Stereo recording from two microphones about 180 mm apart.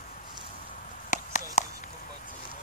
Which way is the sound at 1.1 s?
45° left (ahead or behind).